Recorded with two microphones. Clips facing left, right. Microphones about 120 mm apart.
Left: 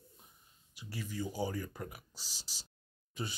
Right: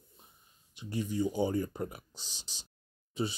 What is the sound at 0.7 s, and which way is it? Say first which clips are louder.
Speech: right 8 dB; 20° right (ahead or behind).